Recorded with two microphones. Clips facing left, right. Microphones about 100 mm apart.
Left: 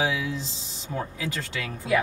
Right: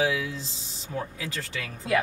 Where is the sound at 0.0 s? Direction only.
25° left (ahead or behind).